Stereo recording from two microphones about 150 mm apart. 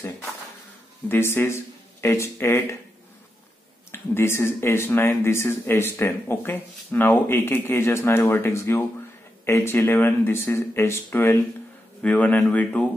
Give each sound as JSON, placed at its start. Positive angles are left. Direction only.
{"t": 1.0, "sound": "speech", "side_deg": 15}
{"t": 3.9, "sound": "speech", "side_deg": 15}